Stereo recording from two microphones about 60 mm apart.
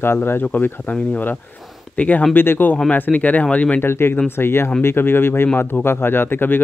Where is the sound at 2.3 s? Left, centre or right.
Left.